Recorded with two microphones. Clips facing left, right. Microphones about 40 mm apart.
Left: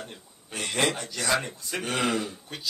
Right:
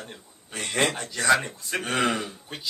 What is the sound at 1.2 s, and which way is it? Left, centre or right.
Speech, right.